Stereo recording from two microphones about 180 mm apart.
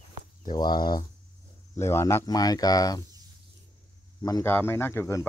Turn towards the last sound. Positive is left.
turn(degrees=15)  # may be behind; listen again after turning